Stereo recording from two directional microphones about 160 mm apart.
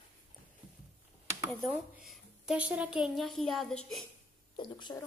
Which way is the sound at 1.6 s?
Centre (ahead or behind).